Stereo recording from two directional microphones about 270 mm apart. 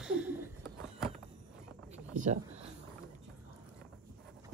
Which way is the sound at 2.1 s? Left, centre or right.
Right.